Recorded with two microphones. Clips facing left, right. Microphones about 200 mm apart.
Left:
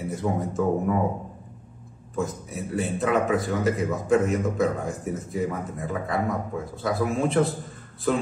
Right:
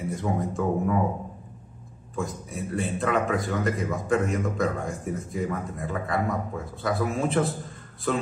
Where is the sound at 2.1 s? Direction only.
Centre (ahead or behind).